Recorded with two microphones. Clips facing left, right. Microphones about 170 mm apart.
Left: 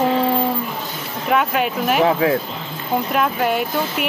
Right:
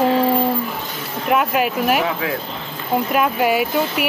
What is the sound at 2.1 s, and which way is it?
Speech, 35° left (ahead or behind).